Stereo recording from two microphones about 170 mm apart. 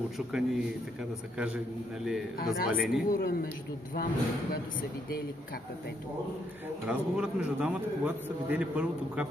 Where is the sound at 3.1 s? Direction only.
60° left (ahead or behind).